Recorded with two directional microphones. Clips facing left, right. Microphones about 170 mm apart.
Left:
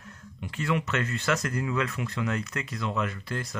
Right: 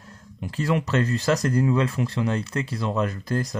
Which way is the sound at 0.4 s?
35° right (ahead or behind).